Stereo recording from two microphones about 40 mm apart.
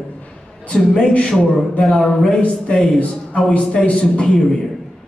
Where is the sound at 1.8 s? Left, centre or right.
Centre.